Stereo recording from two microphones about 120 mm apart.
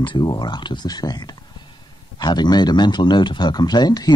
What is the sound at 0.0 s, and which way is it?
Speech, 40° left (ahead or behind).